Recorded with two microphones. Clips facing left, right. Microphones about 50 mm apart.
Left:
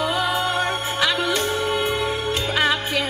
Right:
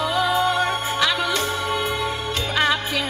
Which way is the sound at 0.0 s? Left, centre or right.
Centre.